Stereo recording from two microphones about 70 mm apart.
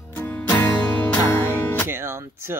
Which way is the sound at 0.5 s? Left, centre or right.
Left.